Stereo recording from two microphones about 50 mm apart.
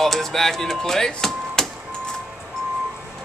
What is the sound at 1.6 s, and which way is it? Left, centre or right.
Printer, centre.